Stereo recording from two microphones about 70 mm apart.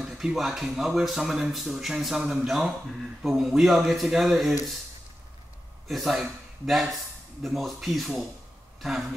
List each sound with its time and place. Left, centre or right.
0.0 s speech: centre
5.9 s speech: centre